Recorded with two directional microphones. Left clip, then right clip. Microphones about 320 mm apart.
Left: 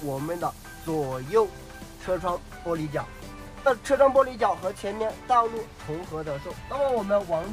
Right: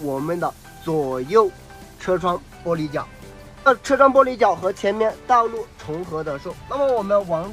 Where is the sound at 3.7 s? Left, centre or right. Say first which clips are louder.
Right 5 dB; right.